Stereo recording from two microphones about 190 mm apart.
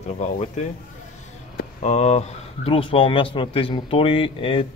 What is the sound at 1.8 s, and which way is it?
Speech, 35° left (ahead or behind).